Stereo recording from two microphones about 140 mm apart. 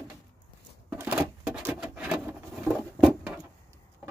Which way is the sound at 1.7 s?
5° right (ahead or behind).